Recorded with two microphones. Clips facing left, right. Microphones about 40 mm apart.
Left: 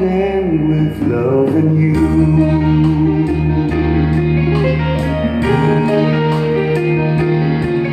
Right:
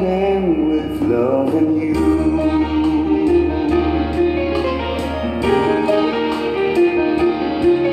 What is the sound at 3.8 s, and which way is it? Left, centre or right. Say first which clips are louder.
Music: left 1 dB; centre.